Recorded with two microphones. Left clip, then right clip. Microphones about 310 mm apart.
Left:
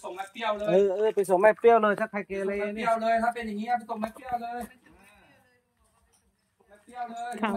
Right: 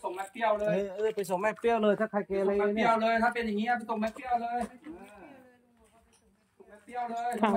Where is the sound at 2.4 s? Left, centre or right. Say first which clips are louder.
Right 1 dB; centre.